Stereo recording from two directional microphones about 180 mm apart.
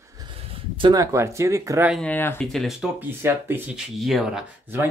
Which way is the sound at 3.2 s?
10° right (ahead or behind).